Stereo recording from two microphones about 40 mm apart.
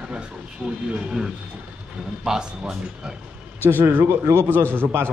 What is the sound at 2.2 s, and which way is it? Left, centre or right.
Speech, centre.